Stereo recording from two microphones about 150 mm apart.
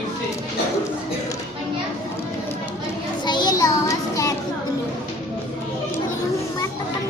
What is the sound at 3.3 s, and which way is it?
Child singing, 25° left (ahead or behind).